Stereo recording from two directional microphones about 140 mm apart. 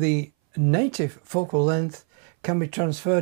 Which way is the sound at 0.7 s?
15° right (ahead or behind).